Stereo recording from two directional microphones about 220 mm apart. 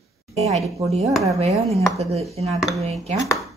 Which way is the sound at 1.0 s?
Centre (ahead or behind).